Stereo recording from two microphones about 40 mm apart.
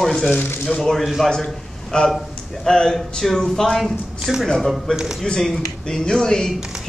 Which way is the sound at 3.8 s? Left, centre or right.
Centre.